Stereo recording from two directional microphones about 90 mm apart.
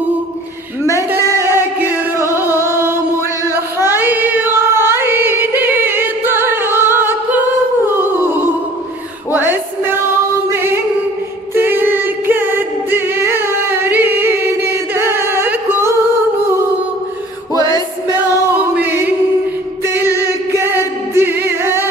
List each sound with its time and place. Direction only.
1.3 s music: 30° right (ahead or behind)
3.4 s female singing: 25° right (ahead or behind)
9.3 s music: 20° right (ahead or behind)
17.6 s music: 45° left (ahead or behind)
18.8 s choir: 20° right (ahead or behind)
20.7 s singing: 25° right (ahead or behind)